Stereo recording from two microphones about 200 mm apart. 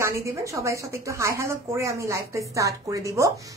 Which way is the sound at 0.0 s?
15° right (ahead or behind).